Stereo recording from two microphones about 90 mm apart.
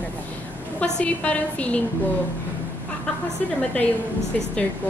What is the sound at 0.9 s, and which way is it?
Speech, 15° left (ahead or behind).